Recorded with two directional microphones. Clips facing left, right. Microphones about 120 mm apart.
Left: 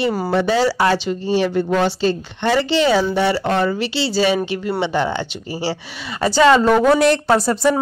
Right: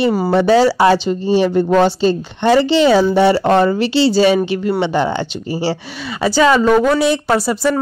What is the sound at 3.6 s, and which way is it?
Speech, 35° right (ahead or behind).